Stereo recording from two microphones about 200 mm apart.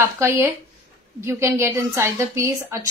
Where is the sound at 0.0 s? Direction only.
10° right (ahead or behind).